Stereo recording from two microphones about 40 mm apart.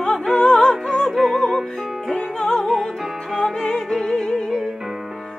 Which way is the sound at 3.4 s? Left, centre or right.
Centre.